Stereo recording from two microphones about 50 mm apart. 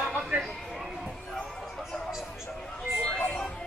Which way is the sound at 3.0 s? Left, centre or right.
Centre.